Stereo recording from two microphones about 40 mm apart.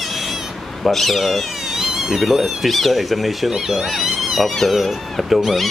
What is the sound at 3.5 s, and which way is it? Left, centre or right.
Speech, centre.